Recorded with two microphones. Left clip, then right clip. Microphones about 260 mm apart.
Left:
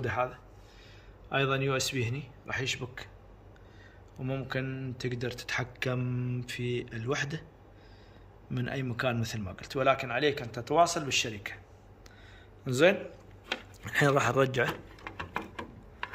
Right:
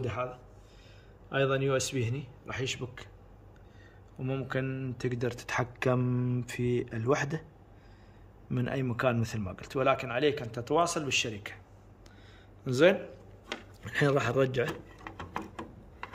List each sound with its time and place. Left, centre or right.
0.0 s a man's voice: centre
1.3 s a man's voice: centre
4.2 s speech: centre
8.5 s speech: centre
12.6 s speech: centre